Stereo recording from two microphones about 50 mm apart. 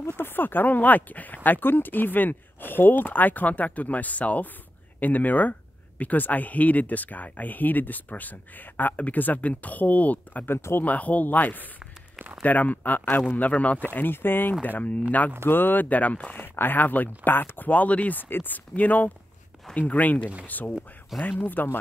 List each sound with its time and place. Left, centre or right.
0.1 s speech: left
10.4 s speech: left
10.8 s speech: left
13.8 s speech: left
14.6 s speech: left
16.3 s speech: left